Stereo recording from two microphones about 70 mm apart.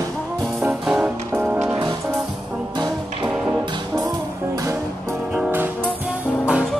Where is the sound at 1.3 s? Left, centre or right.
Right.